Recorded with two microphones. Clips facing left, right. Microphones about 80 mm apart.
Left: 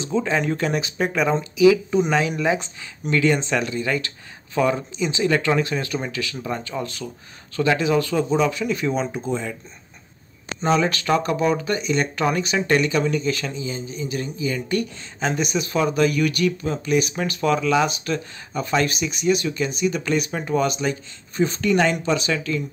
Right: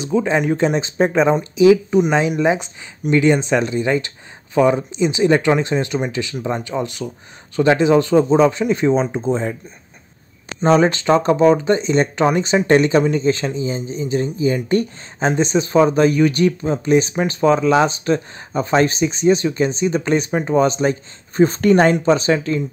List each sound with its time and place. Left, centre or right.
0.0 s speech: centre; by 9.6 s right
10.6 s speech: right